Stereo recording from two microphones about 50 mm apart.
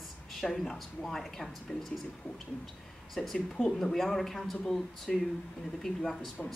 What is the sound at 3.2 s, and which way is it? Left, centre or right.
Speech, centre.